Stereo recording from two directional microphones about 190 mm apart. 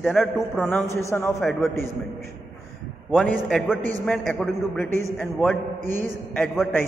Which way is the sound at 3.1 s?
5° left (ahead or behind).